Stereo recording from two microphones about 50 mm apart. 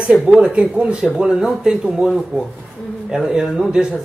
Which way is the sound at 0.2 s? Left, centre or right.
Centre.